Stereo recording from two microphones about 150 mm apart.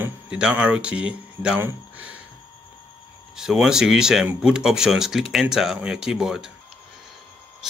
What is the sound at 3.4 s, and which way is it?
Speech, 5° right (ahead or behind).